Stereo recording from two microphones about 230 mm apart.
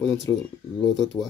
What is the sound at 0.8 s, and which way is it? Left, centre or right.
Speech, left.